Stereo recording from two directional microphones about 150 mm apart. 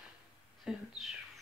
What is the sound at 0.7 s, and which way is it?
Speech, centre (ahead or behind).